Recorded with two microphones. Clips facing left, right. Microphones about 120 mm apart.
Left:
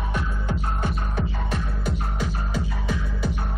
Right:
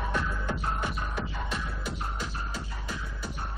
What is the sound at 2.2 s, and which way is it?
Music, 70° left (ahead or behind).